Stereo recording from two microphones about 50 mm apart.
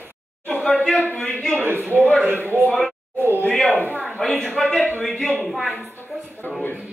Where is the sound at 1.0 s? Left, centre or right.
Left.